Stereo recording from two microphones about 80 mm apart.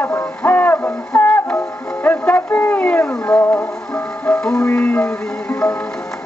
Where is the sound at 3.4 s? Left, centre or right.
Left.